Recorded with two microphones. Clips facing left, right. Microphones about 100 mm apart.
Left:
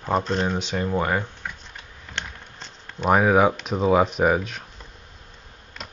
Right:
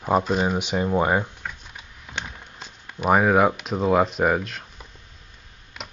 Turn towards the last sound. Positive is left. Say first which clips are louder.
# even
turn(degrees=-10)  # may be behind; listen again after turning